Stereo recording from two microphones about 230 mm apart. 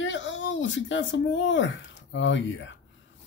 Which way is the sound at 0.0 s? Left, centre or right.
Left.